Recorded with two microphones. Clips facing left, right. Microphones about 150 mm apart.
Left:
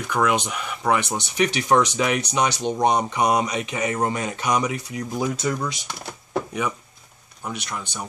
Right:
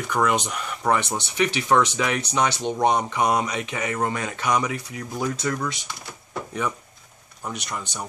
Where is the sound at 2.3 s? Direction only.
15° left (ahead or behind).